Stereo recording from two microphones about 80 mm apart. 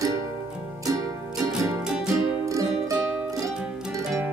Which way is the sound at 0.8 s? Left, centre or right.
Right.